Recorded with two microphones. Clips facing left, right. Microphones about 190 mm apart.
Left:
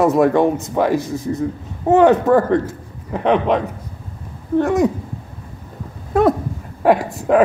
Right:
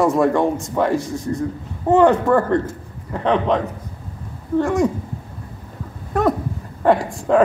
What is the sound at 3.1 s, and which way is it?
Speech, 10° left (ahead or behind).